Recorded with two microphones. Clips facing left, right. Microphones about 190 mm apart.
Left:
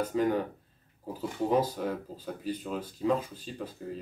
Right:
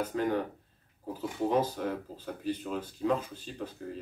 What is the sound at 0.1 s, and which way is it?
Speech, 5° left (ahead or behind).